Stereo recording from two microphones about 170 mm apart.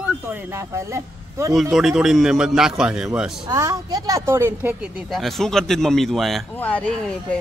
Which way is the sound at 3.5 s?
20° right (ahead or behind).